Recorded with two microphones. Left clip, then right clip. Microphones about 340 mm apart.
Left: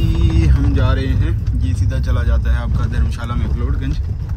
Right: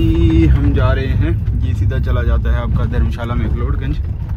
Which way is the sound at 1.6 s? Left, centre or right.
Centre.